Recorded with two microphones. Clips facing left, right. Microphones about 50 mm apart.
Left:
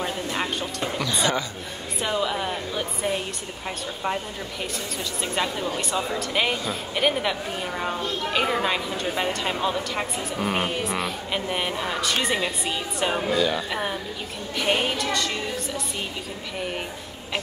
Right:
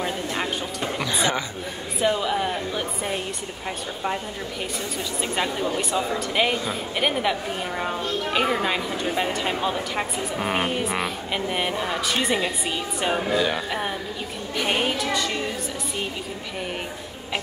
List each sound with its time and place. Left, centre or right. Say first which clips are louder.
0.0 s a woman's voice: right 1 dB; centre
1.0 s a woman's voice: even; centre
2.0 s a woman's voice: right 3 dB; centre
5.2 s a woman's voice: right 1 dB; centre